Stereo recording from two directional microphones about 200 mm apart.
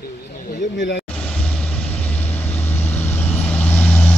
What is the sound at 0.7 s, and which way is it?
Speech, 65° left (ahead or behind).